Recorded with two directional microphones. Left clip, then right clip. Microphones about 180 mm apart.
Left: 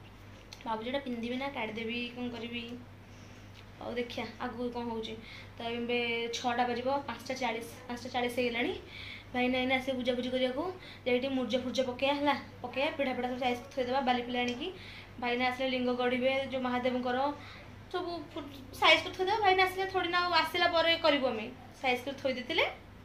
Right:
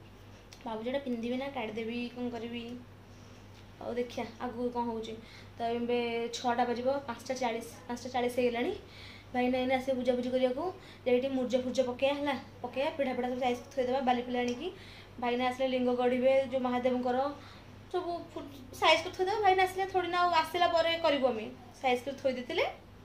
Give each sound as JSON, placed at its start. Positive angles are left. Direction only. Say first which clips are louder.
{"t": 0.7, "sound": "a woman's voice", "louder": "even", "side_deg": -15}
{"t": 3.9, "sound": "a woman's voice", "louder": "right 1 dB", "side_deg": -15}